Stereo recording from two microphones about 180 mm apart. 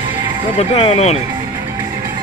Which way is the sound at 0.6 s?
35° left (ahead or behind).